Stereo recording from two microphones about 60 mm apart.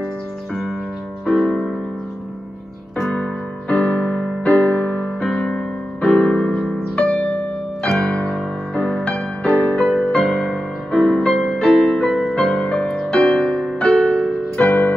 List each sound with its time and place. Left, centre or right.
3.2 s music: left
5.2 s music: centre
6.5 s music: centre
7.0 s music: left
8.2 s music: centre; by 9.8 s left
9.9 s music: centre
10.2 s music: centre; by 15.0 s left